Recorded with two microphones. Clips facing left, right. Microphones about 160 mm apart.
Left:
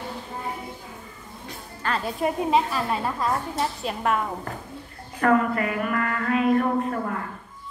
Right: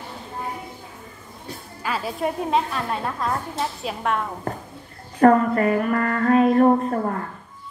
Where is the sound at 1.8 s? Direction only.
5° right (ahead or behind).